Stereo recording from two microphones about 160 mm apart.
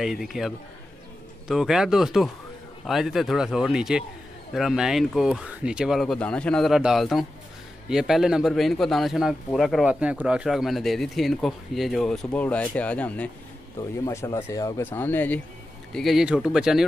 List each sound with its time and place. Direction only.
0.0 s speech: centre (ahead or behind)
15.9 s speech: centre (ahead or behind)